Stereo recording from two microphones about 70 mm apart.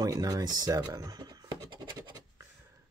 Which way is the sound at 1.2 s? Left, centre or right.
Right.